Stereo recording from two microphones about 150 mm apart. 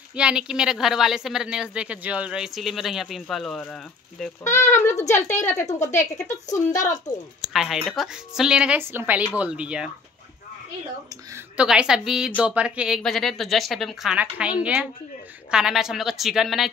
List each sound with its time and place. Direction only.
0.1 s speech: 5° right (ahead or behind)
4.5 s a woman's voice: 20° left (ahead or behind)
7.4 s a woman's voice: centre (ahead or behind)
11.3 s a woman's voice: 5° right (ahead or behind)